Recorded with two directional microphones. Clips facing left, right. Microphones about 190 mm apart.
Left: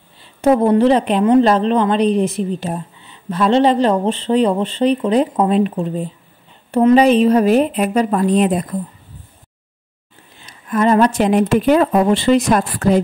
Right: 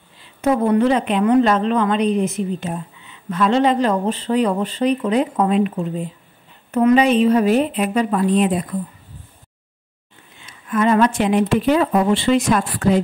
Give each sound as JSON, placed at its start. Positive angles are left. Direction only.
{"t": 0.4, "sound": "a woman's voice", "side_deg": 30}
{"t": 10.4, "sound": "a woman's voice", "side_deg": 40}